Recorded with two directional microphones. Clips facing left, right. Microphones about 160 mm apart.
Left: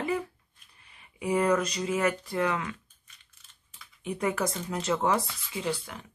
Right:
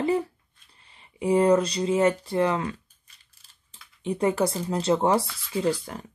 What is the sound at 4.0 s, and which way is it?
Speech, 30° right (ahead or behind).